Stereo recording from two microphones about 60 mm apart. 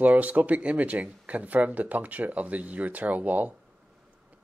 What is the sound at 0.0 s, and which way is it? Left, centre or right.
Speech, right.